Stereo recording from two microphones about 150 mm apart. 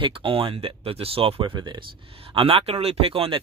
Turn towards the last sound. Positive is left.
turn(degrees=-40)  # may be behind; listen again after turning